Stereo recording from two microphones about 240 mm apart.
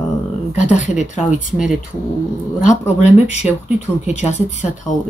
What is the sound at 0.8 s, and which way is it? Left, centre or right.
Speech, left.